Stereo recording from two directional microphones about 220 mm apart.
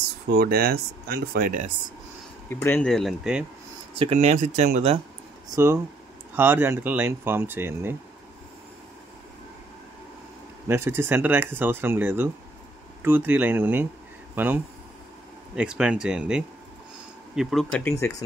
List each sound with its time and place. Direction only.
0.3 s speech: 45° right (ahead or behind)
2.5 s speech: 10° left (ahead or behind)
3.9 s speech: 25° right (ahead or behind)
5.5 s speech: 15° right (ahead or behind)
10.7 s speech: 10° right (ahead or behind); by 18.1 s 10° left (ahead or behind)